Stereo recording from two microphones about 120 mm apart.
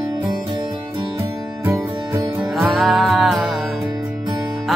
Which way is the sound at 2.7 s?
Centre (ahead or behind).